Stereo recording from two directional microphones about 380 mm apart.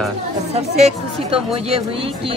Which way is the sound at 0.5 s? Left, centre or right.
Centre.